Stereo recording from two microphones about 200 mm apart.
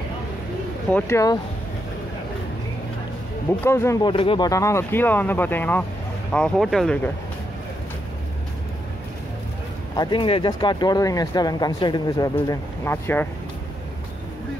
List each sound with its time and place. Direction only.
0.9 s speech: 15° left (ahead or behind)
3.6 s speech: 15° left (ahead or behind)
9.9 s speech: 25° left (ahead or behind)